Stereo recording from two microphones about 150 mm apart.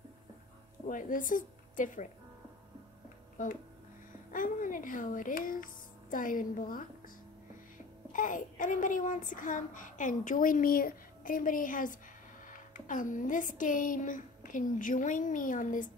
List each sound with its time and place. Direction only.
0.8 s a woman's voice: 60° left (ahead or behind)
3.4 s a woman's voice: 60° left (ahead or behind)
8.1 s a woman's voice: 60° left (ahead or behind)